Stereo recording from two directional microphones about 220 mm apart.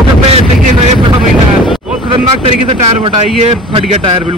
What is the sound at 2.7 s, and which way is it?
Speech, 30° right (ahead or behind).